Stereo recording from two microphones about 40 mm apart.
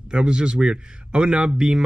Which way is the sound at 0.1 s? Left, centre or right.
Right.